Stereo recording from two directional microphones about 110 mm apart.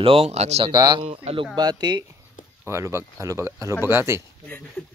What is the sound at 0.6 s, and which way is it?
Speech, 45° right (ahead or behind).